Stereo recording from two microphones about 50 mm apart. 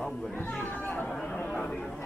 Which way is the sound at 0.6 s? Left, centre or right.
Left.